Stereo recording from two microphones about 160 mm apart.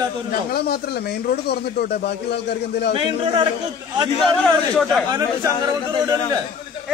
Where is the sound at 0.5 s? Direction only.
75° left (ahead or behind).